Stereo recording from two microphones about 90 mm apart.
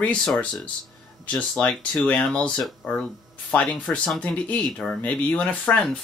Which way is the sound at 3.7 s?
10° left (ahead or behind).